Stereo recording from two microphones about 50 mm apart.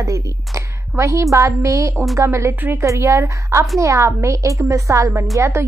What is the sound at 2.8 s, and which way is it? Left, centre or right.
Speech, right.